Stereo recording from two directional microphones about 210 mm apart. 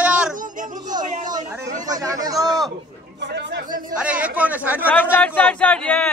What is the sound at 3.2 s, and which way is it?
Speech, 55° right (ahead or behind).